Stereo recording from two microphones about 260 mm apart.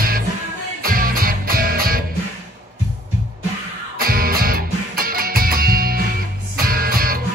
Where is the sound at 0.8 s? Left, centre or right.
Right.